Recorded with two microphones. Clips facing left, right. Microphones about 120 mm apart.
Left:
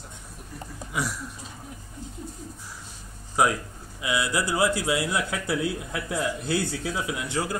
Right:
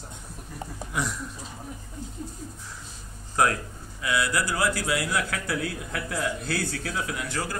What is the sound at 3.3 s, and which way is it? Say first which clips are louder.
Speech: left 1 dB; 10° left (ahead or behind).